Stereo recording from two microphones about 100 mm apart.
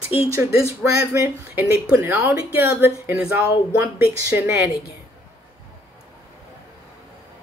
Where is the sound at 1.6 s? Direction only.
15° right (ahead or behind).